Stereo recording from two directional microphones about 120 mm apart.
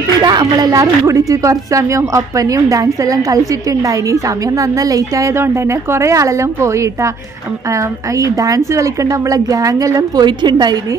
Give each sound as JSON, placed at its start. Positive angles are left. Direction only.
{"t": 0.2, "sound": "a woman's voice", "side_deg": -35}